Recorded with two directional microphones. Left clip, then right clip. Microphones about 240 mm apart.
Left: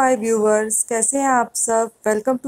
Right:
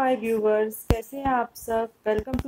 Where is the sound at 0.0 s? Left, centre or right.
Centre.